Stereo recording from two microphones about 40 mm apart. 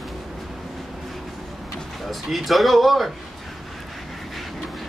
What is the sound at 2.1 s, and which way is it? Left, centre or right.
Speech, centre.